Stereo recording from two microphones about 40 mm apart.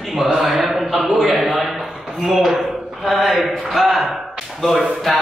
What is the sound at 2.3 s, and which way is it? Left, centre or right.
A man's voice, centre.